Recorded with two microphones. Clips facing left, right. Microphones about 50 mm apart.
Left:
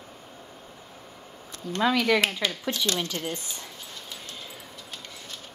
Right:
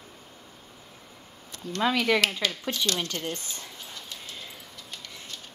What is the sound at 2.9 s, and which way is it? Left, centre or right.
Speech, left.